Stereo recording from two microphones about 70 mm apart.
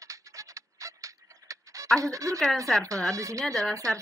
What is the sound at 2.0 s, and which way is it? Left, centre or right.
Speech, right.